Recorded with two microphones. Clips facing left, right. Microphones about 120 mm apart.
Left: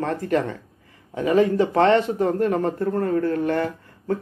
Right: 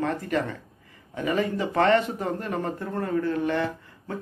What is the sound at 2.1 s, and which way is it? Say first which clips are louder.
Speech: left 8 dB; 50° left (ahead or behind).